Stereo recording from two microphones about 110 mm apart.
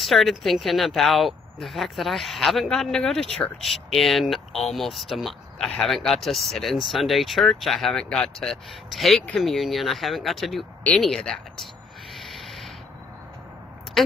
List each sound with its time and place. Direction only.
0.0 s speech: centre (ahead or behind)
11.0 s a sound: 5° left (ahead or behind)
14.0 s speech: 5° left (ahead or behind)